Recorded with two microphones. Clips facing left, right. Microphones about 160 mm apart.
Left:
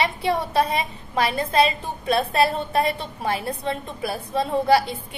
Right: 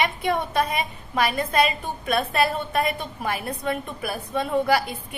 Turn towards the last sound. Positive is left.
turn(degrees=30)  # may be behind; listen again after turning